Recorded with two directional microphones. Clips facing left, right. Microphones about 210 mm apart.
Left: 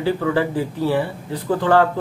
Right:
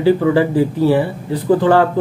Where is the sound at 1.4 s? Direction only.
15° right (ahead or behind).